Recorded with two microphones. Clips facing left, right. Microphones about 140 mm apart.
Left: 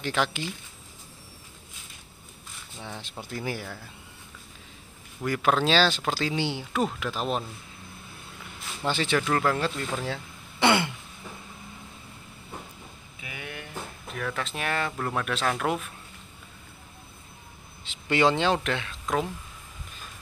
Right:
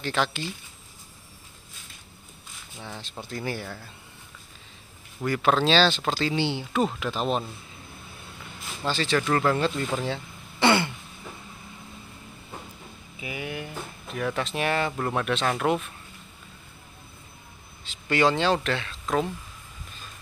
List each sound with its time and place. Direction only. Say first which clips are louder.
0.0 s speech: right 1 dB; 10° left (ahead or behind)
2.8 s speech: even; 10° left (ahead or behind)
5.2 s speech: right 1 dB; 5° left (ahead or behind)
8.8 s speech: even; 15° left (ahead or behind)
9.2 s speech: right 2 dB; centre (ahead or behind)
13.2 s speech: right 6 dB; 5° right (ahead or behind)
17.8 s speech: even; 20° left (ahead or behind)
19.0 s speech: right 2 dB; centre (ahead or behind)